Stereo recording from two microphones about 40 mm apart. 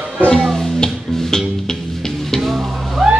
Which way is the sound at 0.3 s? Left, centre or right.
Centre.